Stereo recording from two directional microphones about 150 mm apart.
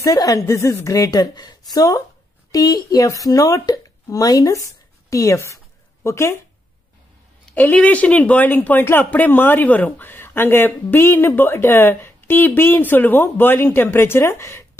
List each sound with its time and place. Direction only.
0.0 s a woman's voice: 25° left (ahead or behind)
7.5 s speech: 10° left (ahead or behind)